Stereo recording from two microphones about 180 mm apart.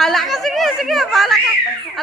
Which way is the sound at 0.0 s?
Centre (ahead or behind).